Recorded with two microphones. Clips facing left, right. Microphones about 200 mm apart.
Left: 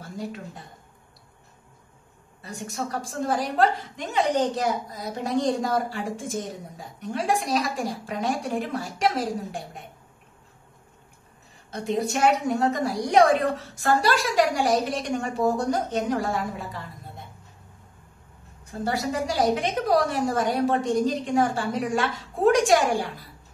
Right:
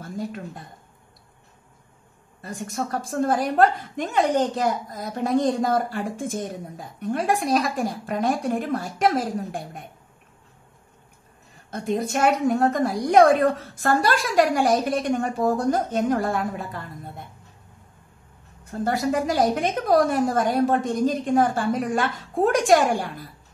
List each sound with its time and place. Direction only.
2.4 s a woman's voice: 50° right (ahead or behind)
11.7 s a woman's voice: 50° right (ahead or behind)
18.7 s a woman's voice: 55° right (ahead or behind)